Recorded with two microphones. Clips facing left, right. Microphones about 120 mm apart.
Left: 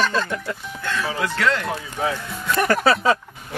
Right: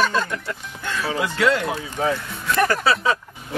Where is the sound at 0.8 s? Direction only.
10° right (ahead or behind).